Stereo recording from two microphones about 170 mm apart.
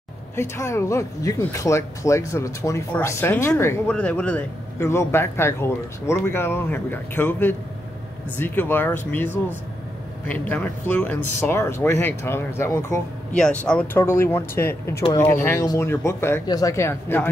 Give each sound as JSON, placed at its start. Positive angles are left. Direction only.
{"t": 0.4, "sound": "speech", "side_deg": 15}